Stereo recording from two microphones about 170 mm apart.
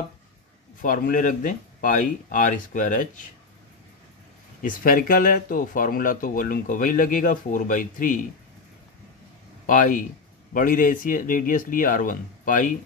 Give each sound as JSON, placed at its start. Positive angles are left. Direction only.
{"t": 0.7, "sound": "speech", "side_deg": 55}
{"t": 4.6, "sound": "speech", "side_deg": 55}
{"t": 9.7, "sound": "speech", "side_deg": 50}